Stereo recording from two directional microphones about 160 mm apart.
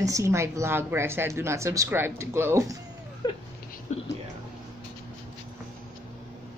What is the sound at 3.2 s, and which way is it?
Speech, 25° left (ahead or behind).